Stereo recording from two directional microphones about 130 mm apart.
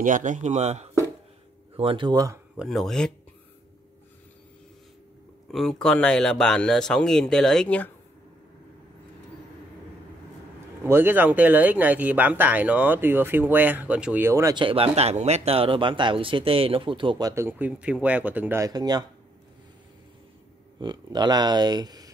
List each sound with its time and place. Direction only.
0.0 s speech: 80° right; by 0.8 s 60° right (ahead or behind)
1.8 s speech: 40° right (ahead or behind)
2.5 s speech: centre (ahead or behind)
5.5 s speech: centre (ahead or behind)
10.8 s speech: 15° right (ahead or behind)
14.5 s speech: 40° right (ahead or behind)
15.0 s speech: 55° right (ahead or behind); by 17.3 s 40° right (ahead or behind)
17.3 s speech: 20° right (ahead or behind)
18.7 s speech: 30° right (ahead or behind)
20.8 s speech: 35° right (ahead or behind)